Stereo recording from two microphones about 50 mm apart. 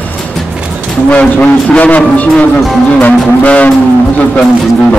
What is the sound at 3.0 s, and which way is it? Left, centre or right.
Music, left.